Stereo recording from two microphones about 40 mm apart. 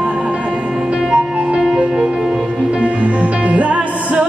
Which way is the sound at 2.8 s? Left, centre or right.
Right.